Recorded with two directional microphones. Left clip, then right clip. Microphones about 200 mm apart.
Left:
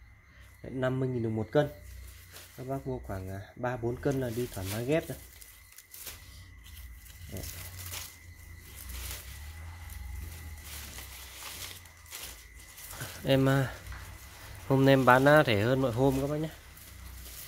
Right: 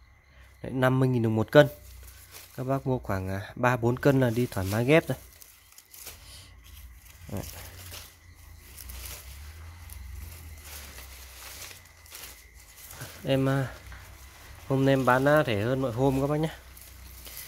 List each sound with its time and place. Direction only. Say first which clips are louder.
0.6 s speech: right 6 dB; 30° right (ahead or behind)
13.0 s speech: even; 5° right (ahead or behind)
16.2 s speech: right 5 dB; 25° right (ahead or behind)